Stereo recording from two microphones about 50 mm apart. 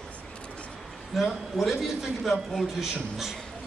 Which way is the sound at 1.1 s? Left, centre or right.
Centre.